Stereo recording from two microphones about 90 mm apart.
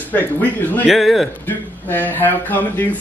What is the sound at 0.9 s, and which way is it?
Speech, centre (ahead or behind).